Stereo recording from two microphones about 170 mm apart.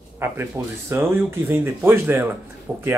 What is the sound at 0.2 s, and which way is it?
Speech, 15° right (ahead or behind).